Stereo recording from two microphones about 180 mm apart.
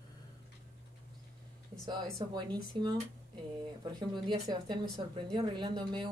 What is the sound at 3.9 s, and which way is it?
A woman's voice, 25° right (ahead or behind).